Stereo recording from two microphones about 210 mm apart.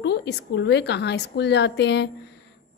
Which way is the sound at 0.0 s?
55° left (ahead or behind).